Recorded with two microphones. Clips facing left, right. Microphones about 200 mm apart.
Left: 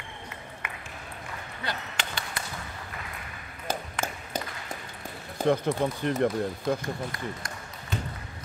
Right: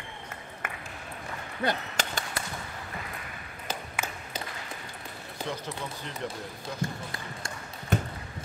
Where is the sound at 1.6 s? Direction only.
45° right (ahead or behind).